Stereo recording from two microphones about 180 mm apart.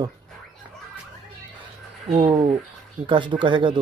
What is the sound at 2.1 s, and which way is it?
Speech, 40° right (ahead or behind).